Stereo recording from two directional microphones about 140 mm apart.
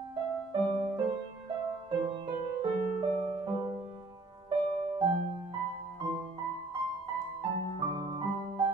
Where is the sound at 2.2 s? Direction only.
40° right (ahead or behind).